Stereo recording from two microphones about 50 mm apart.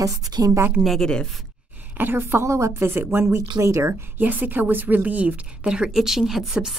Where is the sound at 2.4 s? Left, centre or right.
Right.